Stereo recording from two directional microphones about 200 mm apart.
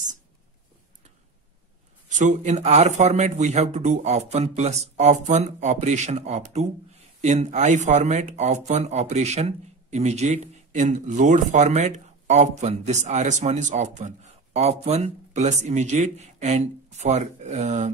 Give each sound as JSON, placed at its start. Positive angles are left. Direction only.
{"t": 2.0, "sound": "speech", "side_deg": -40}